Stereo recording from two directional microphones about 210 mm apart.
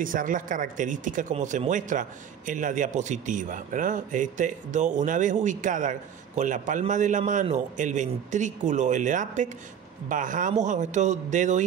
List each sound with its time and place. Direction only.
0.0 s speech: 40° right (ahead or behind)